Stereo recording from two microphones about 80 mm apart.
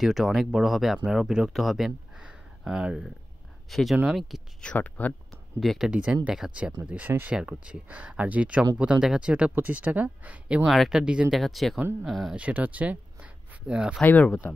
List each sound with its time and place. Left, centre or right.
0.0 s speech: centre
4.7 s speech: left
5.6 s speech: centre
5.9 s speech: centre
6.9 s speech: right
10.6 s speech: centre
12.4 s speech: centre
14.0 s speech: centre